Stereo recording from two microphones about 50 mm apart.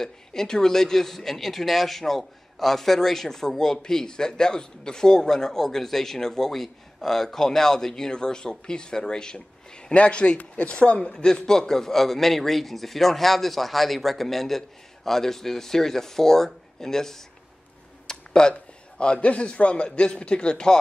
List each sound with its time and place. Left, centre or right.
0.0 s a man's voice: centre